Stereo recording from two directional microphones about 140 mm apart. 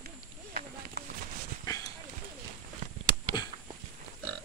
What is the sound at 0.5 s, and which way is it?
Run, 90° right.